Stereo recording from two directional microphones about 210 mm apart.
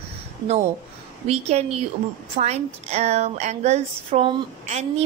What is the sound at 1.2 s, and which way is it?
A woman's voice, 30° right (ahead or behind).